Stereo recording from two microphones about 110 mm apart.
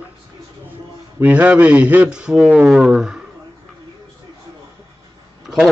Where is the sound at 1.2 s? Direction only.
15° right (ahead or behind).